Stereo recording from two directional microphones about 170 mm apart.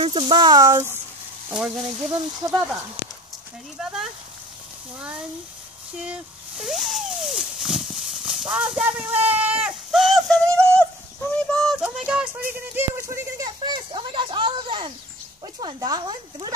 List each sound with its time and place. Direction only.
0.0 s speech: 30° right (ahead or behind)
1.5 s frying: 5° right (ahead or behind)
3.7 s frying: 5° right (ahead or behind)
5.9 s a sound: 5° right (ahead or behind)
12.0 s music: 5° right (ahead or behind)
12.7 s speech: 15° right (ahead or behind)